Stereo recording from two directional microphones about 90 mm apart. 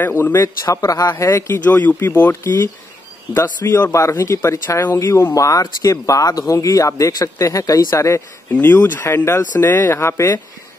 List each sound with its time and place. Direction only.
0.1 s speech: 30° left (ahead or behind)
0.7 s speech: 40° left (ahead or behind)
1.6 s speech: 20° left (ahead or behind)
4.9 s speech: 35° left (ahead or behind)
8.5 s speech: 20° left (ahead or behind)